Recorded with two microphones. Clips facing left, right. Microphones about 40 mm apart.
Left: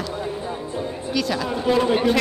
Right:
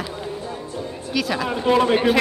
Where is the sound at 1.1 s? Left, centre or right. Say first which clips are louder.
Right 1 dB; centre.